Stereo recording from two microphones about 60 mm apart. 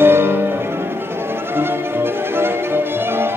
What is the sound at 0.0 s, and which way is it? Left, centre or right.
Music, right.